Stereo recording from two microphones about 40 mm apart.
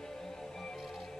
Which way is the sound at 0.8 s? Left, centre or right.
Centre.